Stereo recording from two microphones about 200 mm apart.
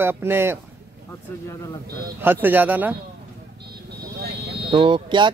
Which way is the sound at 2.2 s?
10° right (ahead or behind).